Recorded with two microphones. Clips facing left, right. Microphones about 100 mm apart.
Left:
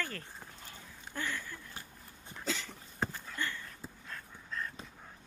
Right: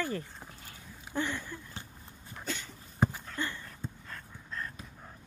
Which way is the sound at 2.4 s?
90° left.